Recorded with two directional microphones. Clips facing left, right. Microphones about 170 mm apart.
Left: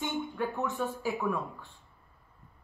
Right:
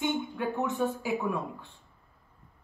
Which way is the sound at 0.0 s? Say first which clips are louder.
Right 3 dB; 20° right (ahead or behind).